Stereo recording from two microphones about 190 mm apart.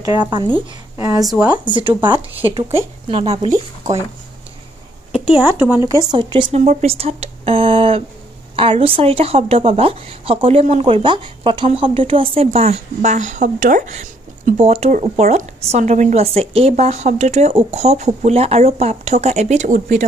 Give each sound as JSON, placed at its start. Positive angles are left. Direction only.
{"t": 0.0, "sound": "a woman's voice", "side_deg": -20}
{"t": 1.2, "sound": "speech", "side_deg": -5}
{"t": 2.0, "sound": "a woman's voice", "side_deg": -25}
{"t": 5.3, "sound": "a woman's voice", "side_deg": -10}